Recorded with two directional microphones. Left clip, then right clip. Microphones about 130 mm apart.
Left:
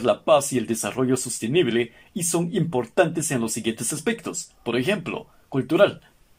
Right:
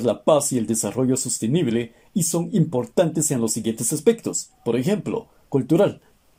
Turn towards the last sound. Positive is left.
turn(degrees=-45)  # may be behind; listen again after turning